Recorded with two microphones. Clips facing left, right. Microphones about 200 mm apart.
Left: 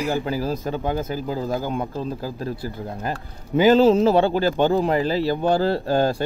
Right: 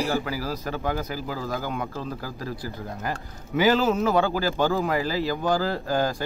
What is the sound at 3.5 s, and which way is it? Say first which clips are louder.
Speech: left 5 dB; 15° left (ahead or behind).